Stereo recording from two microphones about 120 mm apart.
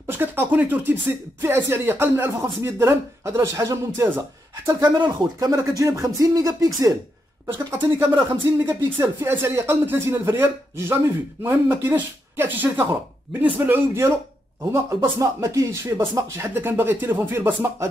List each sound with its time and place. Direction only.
0.0 s speech: 15° right (ahead or behind)
8.0 s speech: 20° right (ahead or behind)